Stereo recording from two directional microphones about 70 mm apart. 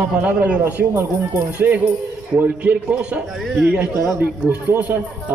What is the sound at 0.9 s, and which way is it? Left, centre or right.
Speech, right.